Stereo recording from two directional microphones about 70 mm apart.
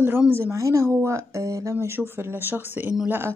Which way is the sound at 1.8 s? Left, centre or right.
Right.